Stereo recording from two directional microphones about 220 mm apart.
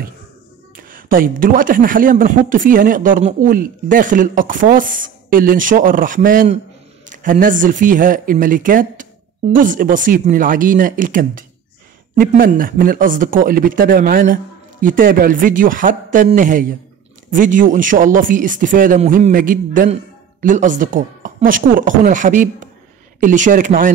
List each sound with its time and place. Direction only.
0.7 s speech: 40° right (ahead or behind)